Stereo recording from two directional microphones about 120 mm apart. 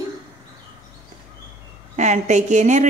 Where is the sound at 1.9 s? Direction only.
75° right (ahead or behind).